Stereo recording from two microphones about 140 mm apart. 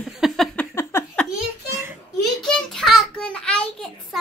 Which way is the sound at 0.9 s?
20° left (ahead or behind).